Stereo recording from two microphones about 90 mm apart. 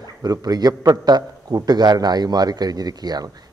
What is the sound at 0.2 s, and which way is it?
A man's voice, 45° right (ahead or behind).